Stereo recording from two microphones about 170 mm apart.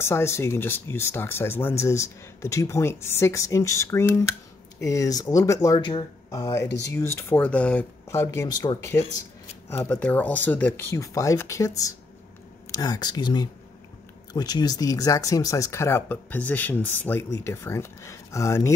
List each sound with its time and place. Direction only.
0.0 s speech: 15° left (ahead or behind)